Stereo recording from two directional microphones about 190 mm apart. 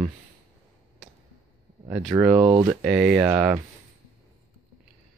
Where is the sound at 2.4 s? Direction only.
20° right (ahead or behind).